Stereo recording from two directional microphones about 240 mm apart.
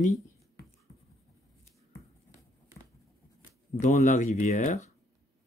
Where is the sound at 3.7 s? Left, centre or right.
Left.